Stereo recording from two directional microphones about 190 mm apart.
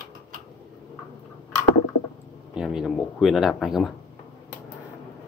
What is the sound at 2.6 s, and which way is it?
Speech, 5° right (ahead or behind).